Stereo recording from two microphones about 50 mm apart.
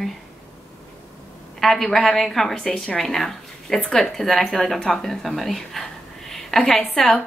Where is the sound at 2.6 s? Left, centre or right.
Centre.